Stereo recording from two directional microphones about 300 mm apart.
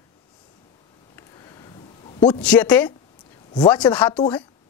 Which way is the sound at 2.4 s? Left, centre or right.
Centre.